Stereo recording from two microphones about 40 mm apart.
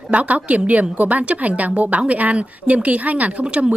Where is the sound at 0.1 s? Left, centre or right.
Right.